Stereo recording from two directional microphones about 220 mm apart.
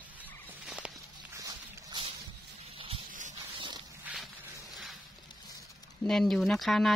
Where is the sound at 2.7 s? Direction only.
25° right (ahead or behind).